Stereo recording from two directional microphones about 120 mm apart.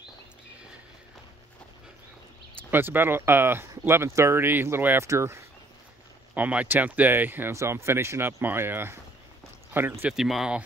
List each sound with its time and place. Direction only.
2.7 s speech: 15° right (ahead or behind)
10.0 s speech: 5° right (ahead or behind)